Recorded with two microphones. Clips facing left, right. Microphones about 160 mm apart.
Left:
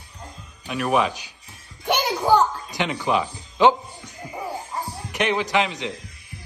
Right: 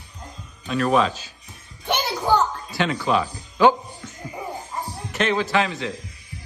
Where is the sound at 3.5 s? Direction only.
20° left (ahead or behind).